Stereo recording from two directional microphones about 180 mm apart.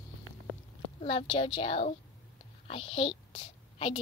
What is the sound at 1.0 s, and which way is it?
A woman's voice, 30° left (ahead or behind).